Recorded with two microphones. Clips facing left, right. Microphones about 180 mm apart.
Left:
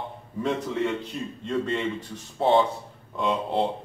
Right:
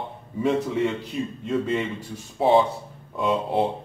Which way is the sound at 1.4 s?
5° right (ahead or behind).